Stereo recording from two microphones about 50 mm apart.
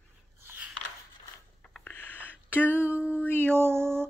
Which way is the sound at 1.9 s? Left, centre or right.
Left.